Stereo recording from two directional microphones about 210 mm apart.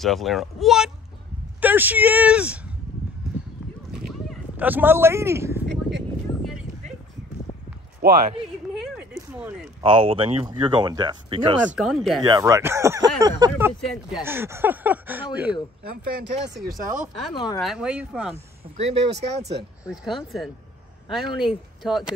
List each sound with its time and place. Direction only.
0.0 s speech: centre (ahead or behind)
3.9 s a sound: 5° right (ahead or behind)
5.7 s speech: 55° right (ahead or behind)
8.0 s a man's voice: 40° right (ahead or behind)
8.7 s a sound: 5° right (ahead or behind)
9.8 s speech: 25° right (ahead or behind)
11.7 s speech: centre (ahead or behind)
12.3 s speech: 15° right (ahead or behind)
13.7 s speech: centre (ahead or behind)
14.2 s speech: 10° right (ahead or behind)
17.3 s speech: 20° left (ahead or behind)
17.6 s speech: centre (ahead or behind)
18.8 s speech: 30° right (ahead or behind)
19.9 s speech: centre (ahead or behind)